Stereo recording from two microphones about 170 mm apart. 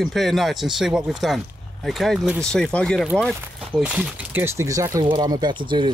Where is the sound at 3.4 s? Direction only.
10° right (ahead or behind).